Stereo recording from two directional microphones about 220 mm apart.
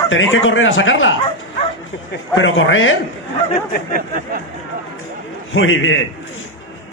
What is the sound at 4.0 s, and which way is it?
Speech, 40° right (ahead or behind).